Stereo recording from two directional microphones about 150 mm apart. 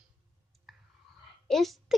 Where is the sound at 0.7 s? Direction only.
Centre (ahead or behind).